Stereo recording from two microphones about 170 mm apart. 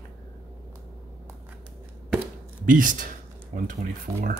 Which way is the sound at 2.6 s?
50° right (ahead or behind).